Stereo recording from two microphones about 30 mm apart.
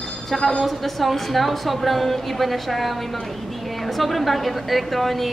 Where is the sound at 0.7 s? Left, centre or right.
Centre.